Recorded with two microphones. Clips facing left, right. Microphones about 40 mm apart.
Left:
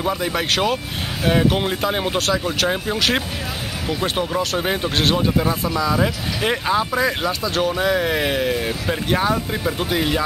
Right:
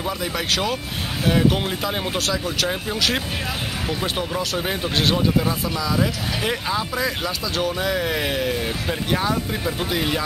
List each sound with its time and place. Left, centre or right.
0.0 s speech: centre